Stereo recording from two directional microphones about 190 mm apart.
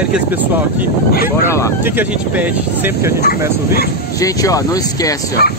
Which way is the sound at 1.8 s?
10° right (ahead or behind).